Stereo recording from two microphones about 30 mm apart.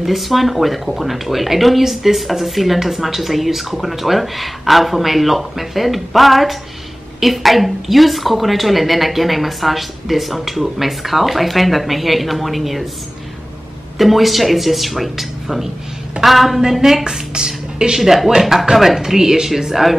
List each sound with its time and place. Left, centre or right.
0.0 s speech: centre
13.9 s speech: centre
17.0 s speech: right
17.9 s speech: centre